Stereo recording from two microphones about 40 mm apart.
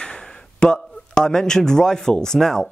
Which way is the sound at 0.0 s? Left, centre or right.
Left.